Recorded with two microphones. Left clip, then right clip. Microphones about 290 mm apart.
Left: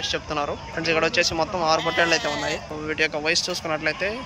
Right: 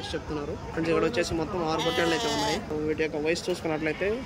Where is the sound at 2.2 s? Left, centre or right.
Right.